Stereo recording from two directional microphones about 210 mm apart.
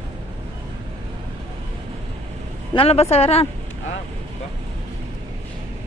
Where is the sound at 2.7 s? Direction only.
25° left (ahead or behind).